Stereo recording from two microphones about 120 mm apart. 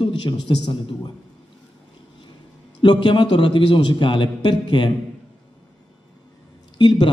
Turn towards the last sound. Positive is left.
turn(degrees=40)  # may be behind; listen again after turning